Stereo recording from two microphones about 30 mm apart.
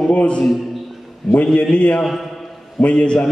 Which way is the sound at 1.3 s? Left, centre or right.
Left.